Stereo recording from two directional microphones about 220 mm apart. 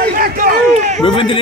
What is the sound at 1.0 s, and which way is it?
Speech, 25° left (ahead or behind).